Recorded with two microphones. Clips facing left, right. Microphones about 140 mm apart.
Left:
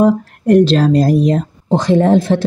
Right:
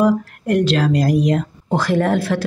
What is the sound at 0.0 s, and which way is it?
Speech, 30° left (ahead or behind).